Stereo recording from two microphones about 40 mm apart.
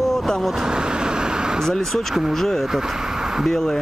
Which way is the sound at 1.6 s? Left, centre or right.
Centre.